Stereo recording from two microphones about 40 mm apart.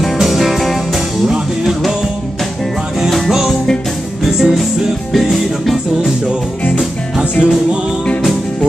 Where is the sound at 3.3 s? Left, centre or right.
Centre.